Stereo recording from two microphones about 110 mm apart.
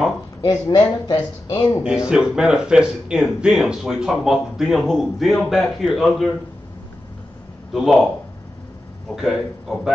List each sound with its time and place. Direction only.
0.4 s speech: 40° left (ahead or behind)
2.0 s speech: 5° right (ahead or behind)
7.7 s speech: centre (ahead or behind)
9.1 s speech: centre (ahead or behind)